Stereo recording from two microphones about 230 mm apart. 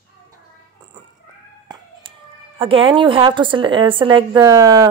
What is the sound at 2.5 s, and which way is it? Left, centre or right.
A woman's voice, right.